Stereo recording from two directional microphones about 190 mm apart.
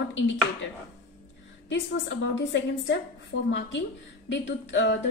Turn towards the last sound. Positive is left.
turn(degrees=75)  # may be behind; listen again after turning